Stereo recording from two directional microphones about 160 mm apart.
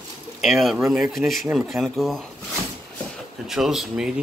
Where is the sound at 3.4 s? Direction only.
Centre (ahead or behind).